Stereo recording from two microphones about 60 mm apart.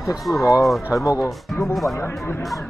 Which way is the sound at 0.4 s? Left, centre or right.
Left.